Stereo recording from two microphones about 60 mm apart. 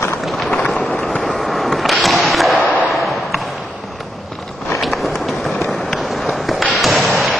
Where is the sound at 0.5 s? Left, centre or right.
Centre.